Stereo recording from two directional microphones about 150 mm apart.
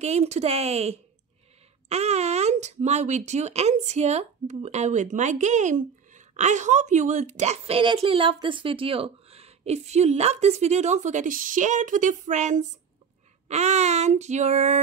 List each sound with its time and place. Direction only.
0.0 s speech: 45° right (ahead or behind)